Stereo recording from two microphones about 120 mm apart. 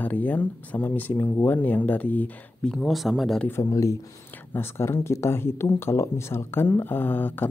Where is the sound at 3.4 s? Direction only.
20° left (ahead or behind).